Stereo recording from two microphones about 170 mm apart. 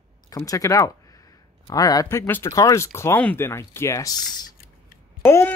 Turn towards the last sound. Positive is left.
turn(degrees=15)  # may be behind; listen again after turning